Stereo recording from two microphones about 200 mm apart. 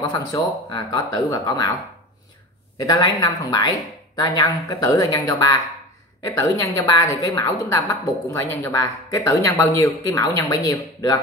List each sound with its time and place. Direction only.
0.0 s speech: 20° left (ahead or behind)
2.9 s a woman's voice: 15° left (ahead or behind)